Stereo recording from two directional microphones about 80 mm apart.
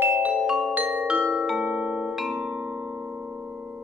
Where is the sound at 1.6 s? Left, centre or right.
Centre.